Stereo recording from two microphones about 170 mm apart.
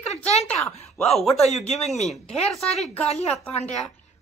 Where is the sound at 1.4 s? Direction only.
40° left (ahead or behind).